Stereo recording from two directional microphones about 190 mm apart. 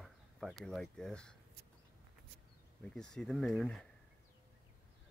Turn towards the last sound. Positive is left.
turn(degrees=5)  # may be behind; listen again after turning